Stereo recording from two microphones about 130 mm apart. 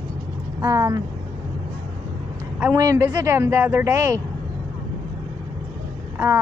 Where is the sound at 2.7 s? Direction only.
25° right (ahead or behind).